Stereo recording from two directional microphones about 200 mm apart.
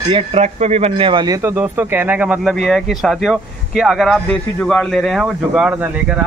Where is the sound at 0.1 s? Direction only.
30° right (ahead or behind).